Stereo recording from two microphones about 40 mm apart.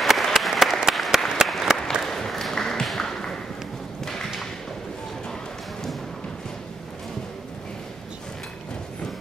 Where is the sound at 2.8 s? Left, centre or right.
Centre.